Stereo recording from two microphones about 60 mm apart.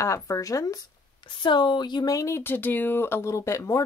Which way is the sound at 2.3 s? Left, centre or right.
Left.